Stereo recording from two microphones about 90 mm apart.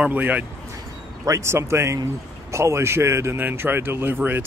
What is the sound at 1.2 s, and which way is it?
A man's voice, 35° right (ahead or behind).